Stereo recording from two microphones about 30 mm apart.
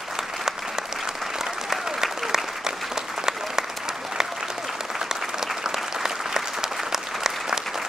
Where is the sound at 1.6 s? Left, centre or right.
Centre.